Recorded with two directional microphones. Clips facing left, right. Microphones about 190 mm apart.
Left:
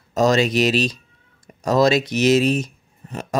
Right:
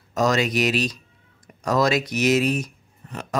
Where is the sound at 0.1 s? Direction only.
25° left (ahead or behind).